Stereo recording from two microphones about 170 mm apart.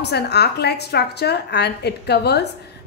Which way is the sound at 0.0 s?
75° left (ahead or behind).